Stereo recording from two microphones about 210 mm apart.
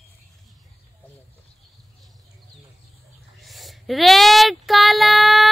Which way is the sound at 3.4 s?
Centre (ahead or behind).